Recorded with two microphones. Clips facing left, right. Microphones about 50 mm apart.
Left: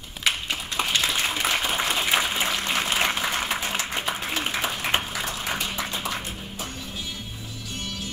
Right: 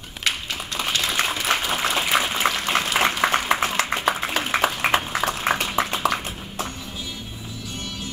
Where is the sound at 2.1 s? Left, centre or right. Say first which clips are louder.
Right 3 dB; right.